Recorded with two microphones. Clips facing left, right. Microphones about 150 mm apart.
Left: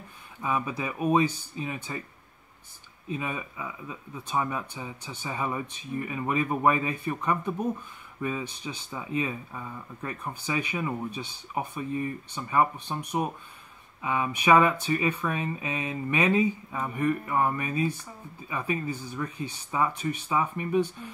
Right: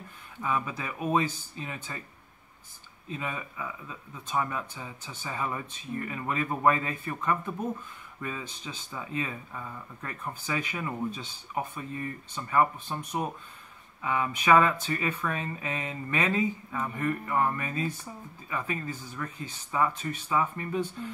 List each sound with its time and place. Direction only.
0.4 s speech: 15° left (ahead or behind)
3.1 s speech: 15° left (ahead or behind)
14.0 s speech: 15° left (ahead or behind)